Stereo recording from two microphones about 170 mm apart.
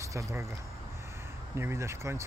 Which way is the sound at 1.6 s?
15° right (ahead or behind).